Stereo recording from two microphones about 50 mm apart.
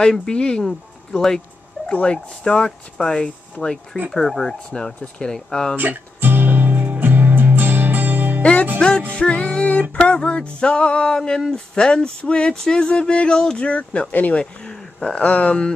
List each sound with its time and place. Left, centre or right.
0.0 s speech: centre
1.9 s speech: left
5.8 s music: right
8.4 s music: left
8.7 s speech: centre
9.1 s a sound: left
14.3 s speech: centre
15.1 s a sound: left